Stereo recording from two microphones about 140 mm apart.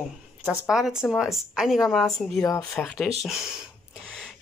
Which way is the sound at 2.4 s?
25° left (ahead or behind).